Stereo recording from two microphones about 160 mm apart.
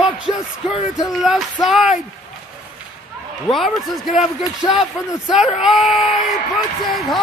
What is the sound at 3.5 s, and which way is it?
Speech, centre (ahead or behind).